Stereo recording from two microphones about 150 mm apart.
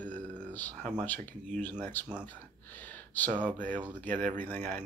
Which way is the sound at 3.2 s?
10° left (ahead or behind).